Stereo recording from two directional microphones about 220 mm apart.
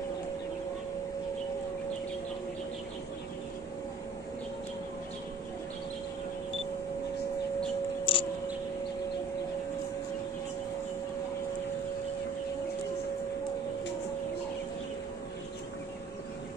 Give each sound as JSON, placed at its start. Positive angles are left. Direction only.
{"t": 8.0, "sound": "scissors", "side_deg": 25}